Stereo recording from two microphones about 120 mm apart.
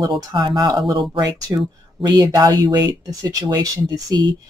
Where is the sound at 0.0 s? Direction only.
40° right (ahead or behind).